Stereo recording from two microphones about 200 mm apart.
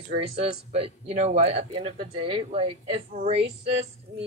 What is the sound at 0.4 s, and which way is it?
Speech, 30° right (ahead or behind).